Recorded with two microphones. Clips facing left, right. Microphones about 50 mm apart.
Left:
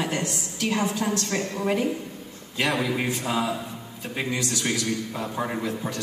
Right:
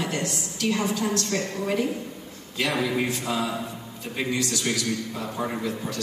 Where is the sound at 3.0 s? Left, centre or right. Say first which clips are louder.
Left 1 dB; centre.